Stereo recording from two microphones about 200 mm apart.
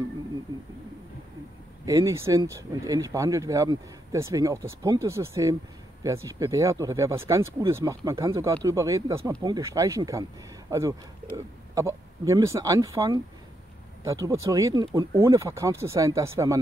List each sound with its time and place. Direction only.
1.9 s speech: 15° right (ahead or behind)